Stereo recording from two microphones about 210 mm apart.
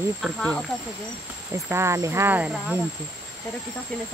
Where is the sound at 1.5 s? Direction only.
15° right (ahead or behind).